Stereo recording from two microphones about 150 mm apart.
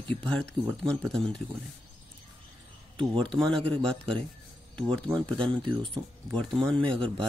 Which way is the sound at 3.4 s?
5° left (ahead or behind).